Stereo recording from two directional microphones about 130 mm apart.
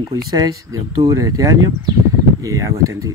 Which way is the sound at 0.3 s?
25° right (ahead or behind).